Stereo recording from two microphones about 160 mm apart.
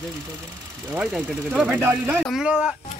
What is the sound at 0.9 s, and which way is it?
Speech, 5° right (ahead or behind).